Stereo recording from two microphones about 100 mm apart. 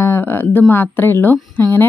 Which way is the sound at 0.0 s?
25° left (ahead or behind).